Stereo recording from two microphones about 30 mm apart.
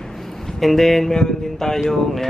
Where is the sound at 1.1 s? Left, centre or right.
Centre.